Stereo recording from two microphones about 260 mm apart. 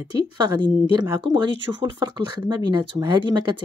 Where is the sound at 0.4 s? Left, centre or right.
Centre.